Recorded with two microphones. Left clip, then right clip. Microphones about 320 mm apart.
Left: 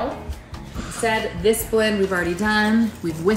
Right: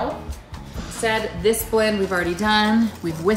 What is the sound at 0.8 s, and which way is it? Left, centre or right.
A woman's voice, centre.